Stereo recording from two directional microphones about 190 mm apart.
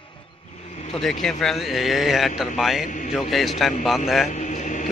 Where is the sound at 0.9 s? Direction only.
Centre (ahead or behind).